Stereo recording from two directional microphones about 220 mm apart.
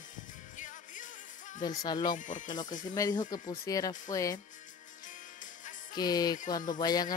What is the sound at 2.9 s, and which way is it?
Speech, 20° left (ahead or behind).